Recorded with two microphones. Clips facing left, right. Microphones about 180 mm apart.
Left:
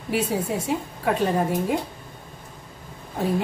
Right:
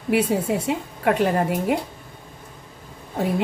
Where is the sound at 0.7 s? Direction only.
70° right (ahead or behind).